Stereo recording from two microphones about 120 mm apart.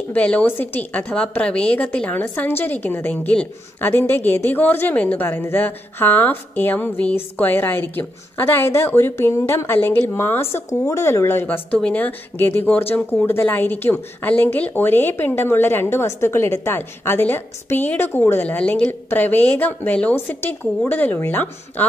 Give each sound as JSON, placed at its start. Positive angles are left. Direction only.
{"t": 0.1, "sound": "a woman's voice", "side_deg": 10}